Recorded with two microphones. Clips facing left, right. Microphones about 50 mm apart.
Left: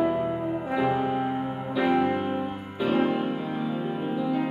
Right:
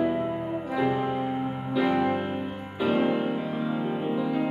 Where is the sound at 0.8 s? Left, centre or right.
Centre.